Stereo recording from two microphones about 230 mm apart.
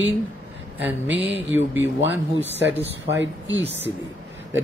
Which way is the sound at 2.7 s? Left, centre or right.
Centre.